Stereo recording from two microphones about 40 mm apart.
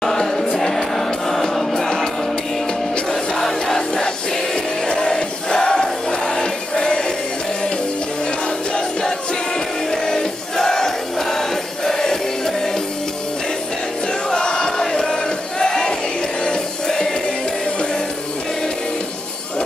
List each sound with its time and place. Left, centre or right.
0.0 s choir: centre
0.6 s music: centre
3.1 s music: centre
9.8 s music: centre
14.3 s music: centre